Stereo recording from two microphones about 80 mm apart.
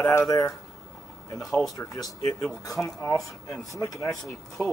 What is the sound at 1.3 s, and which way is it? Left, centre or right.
Speech, centre.